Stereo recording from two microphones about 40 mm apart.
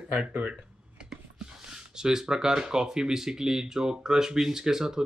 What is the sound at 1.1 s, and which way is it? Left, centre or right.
Speech, centre.